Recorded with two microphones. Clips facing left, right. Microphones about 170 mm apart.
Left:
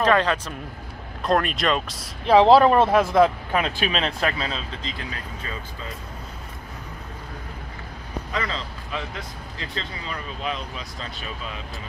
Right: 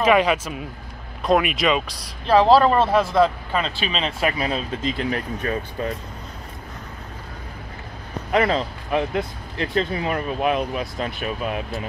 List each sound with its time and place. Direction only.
0.0 s speech: 10° right (ahead or behind)
2.2 s speech: 20° left (ahead or behind)
4.2 s speech: 15° right (ahead or behind)
5.4 s speech: 60° right (ahead or behind)
8.3 s speech: 60° right (ahead or behind)